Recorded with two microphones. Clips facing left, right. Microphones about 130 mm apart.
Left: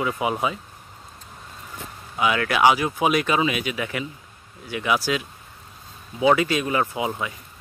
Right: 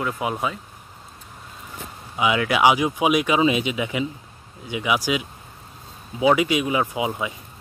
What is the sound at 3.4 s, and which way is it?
Speech, 25° right (ahead or behind).